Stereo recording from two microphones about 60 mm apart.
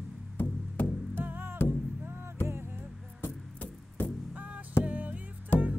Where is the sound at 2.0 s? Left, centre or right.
Right.